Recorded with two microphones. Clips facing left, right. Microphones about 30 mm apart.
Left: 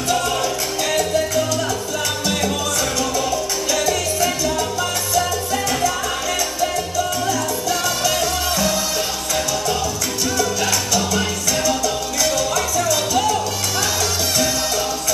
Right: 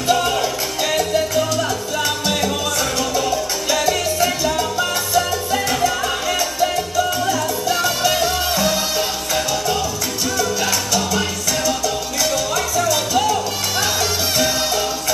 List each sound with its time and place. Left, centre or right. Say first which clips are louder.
0.1 s salsa music: right 3 dB; centre
3.0 s salsa music: right 1 dB; centre
10.3 s music: even; centre